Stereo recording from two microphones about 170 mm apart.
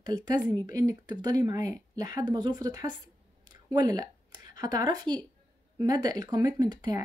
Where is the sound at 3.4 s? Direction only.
25° right (ahead or behind).